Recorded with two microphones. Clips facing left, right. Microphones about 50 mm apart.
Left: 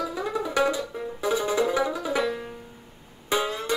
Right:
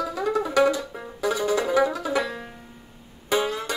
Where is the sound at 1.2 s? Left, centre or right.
Left.